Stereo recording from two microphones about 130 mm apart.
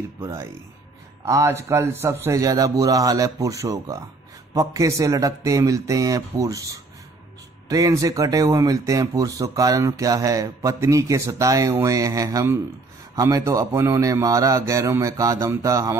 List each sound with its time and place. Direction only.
0.2 s speech: 25° right (ahead or behind)